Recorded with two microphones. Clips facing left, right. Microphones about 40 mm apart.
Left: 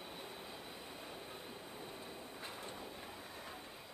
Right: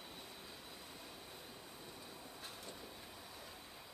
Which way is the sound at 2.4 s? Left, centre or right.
Left.